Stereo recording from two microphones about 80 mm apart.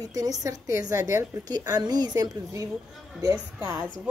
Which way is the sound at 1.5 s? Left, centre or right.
Right.